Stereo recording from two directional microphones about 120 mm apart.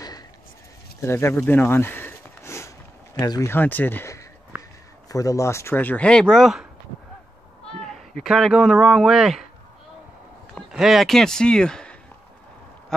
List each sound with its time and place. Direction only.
1.0 s a sound: 20° left (ahead or behind)
3.2 s speech: 35° left (ahead or behind)
3.4 s speech: 15° left (ahead or behind); by 6.7 s 5° right (ahead or behind)
7.8 s speech: 5° left (ahead or behind)
10.7 s speech: 5° right (ahead or behind)